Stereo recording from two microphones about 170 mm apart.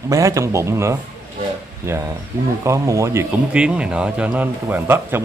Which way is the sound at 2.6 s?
20° right (ahead or behind).